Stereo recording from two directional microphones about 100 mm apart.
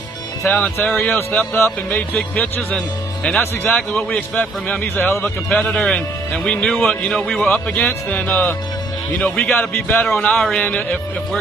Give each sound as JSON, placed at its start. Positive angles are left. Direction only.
{"t": 0.5, "sound": "a man's voice", "side_deg": 15}
{"t": 5.5, "sound": "a man's voice", "side_deg": 10}
{"t": 7.7, "sound": "a man's voice", "side_deg": 15}
{"t": 10.0, "sound": "a man's voice", "side_deg": 5}